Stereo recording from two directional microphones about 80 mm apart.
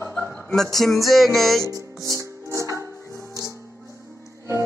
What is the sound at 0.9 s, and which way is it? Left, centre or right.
Music, centre.